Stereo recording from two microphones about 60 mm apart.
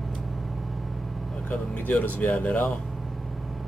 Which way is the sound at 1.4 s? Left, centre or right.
Left.